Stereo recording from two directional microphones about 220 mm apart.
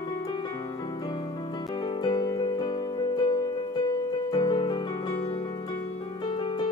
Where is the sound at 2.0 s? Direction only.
20° left (ahead or behind).